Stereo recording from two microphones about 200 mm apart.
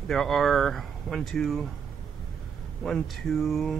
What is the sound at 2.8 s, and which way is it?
Speech, centre (ahead or behind).